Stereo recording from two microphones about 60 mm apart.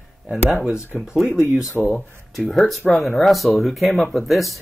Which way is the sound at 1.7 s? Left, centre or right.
Left.